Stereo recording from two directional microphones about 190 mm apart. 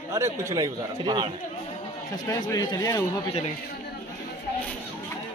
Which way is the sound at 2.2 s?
20° left (ahead or behind).